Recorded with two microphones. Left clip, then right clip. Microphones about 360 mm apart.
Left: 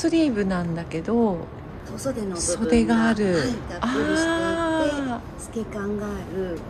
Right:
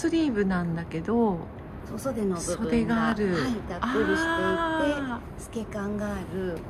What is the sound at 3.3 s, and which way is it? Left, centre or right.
Speech, right.